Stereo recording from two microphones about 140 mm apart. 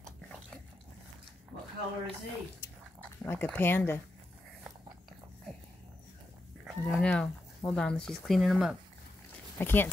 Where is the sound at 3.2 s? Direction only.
15° left (ahead or behind).